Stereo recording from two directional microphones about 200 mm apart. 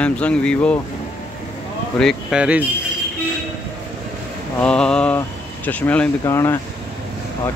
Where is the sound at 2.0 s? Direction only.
Centre (ahead or behind).